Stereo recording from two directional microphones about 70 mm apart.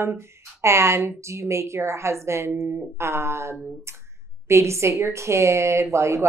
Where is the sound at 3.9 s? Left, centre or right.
Right.